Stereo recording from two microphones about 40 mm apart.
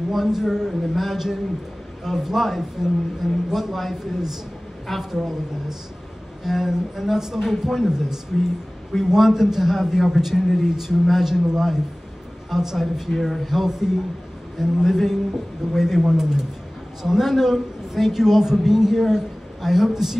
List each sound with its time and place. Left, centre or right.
0.1 s speech: centre